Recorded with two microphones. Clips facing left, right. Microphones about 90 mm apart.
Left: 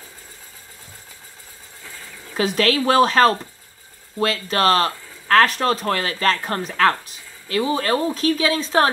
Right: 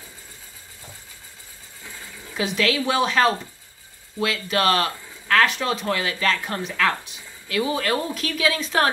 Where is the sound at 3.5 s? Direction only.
45° left (ahead or behind).